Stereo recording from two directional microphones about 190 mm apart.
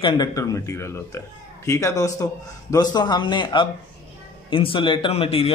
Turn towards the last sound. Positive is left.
turn(degrees=30)  # may be behind; listen again after turning